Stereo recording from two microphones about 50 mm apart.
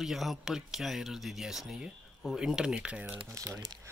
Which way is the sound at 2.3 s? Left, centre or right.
Centre.